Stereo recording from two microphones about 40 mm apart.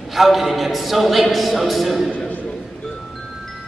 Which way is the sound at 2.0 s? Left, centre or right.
Left.